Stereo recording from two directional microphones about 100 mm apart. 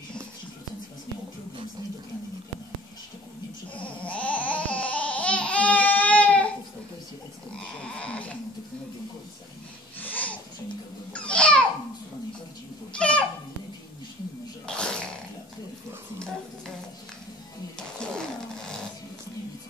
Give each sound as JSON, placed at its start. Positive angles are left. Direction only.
{"t": 4.0, "sound": "babbling", "side_deg": 15}
{"t": 7.8, "sound": "sheep", "side_deg": 10}
{"t": 9.9, "sound": "wheeze", "side_deg": 15}
{"t": 11.1, "sound": "babbling", "side_deg": 10}
{"t": 12.9, "sound": "a sound", "side_deg": 10}
{"t": 14.7, "sound": "a sound", "side_deg": 10}
{"t": 17.7, "sound": "music", "side_deg": 10}